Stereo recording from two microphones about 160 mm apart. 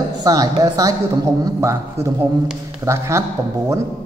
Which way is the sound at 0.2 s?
25° right (ahead or behind).